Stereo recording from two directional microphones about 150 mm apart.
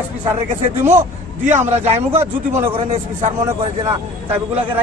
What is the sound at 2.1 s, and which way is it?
Speech, 15° right (ahead or behind).